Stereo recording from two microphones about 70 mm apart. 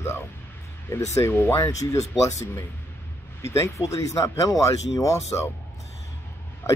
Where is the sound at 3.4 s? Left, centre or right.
Left.